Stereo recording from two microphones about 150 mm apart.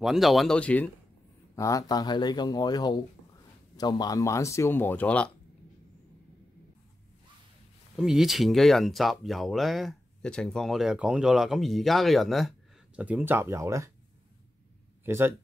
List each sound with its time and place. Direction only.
0.0 s speech: centre (ahead or behind)
1.5 s speech: 20° left (ahead or behind)
7.9 s speech: 5° right (ahead or behind); by 13.9 s 20° right (ahead or behind)
15.0 s speech: 15° right (ahead or behind)